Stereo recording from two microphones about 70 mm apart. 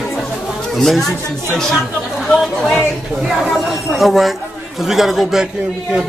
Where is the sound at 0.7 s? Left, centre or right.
Centre.